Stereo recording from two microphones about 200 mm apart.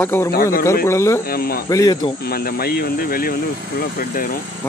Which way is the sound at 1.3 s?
50° left (ahead or behind).